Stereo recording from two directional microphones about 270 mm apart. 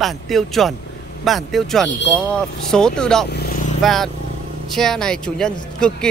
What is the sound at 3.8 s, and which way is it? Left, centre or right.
Speech, centre.